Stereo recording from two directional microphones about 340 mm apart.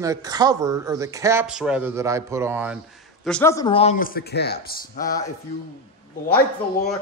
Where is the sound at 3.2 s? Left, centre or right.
Centre; by 5.2 s left.